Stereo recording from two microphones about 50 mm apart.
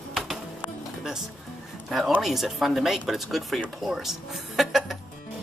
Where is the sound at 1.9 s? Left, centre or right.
Centre.